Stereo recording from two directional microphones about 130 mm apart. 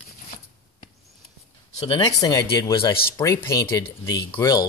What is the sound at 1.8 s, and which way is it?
Speech, 35° left (ahead or behind).